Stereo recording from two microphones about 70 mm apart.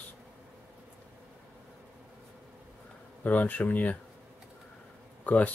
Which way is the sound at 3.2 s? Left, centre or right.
Left.